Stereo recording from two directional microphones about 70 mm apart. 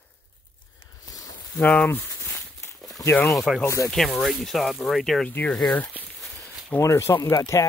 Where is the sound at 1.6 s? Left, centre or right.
Centre.